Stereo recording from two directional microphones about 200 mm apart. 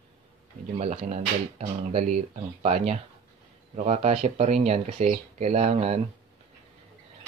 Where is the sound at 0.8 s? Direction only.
30° right (ahead or behind).